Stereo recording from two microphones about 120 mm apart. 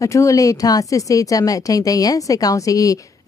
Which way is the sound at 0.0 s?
25° left (ahead or behind).